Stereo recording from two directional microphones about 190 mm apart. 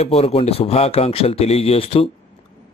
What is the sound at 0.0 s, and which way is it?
Speech, 30° left (ahead or behind).